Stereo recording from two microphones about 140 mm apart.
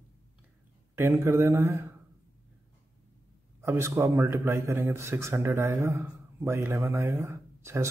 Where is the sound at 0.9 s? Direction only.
20° right (ahead or behind).